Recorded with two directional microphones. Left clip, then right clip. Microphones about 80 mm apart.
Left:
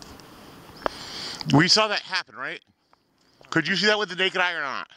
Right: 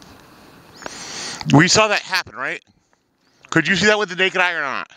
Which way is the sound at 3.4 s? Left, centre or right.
Right.